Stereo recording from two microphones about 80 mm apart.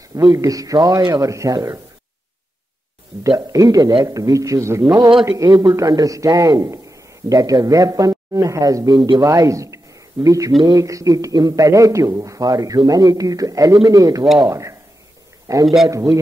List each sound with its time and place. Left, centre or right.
0.1 s speech: right
0.4 s a man's voice: right
3.3 s a man's voice: right
5.4 s a man's voice: right
8.9 s speech: right
9.2 s a man's voice: right